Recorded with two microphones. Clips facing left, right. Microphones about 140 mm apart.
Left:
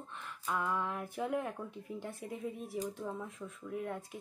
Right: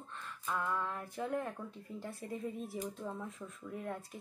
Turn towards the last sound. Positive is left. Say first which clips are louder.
# left 2 dB
turn(degrees=0)  # may be behind; listen again after turning